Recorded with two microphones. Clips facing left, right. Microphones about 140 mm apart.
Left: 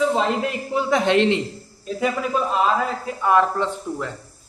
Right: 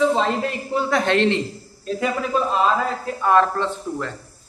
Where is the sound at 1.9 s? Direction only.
5° left (ahead or behind).